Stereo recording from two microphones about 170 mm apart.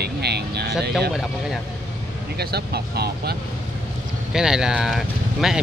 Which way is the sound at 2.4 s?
70° right (ahead or behind).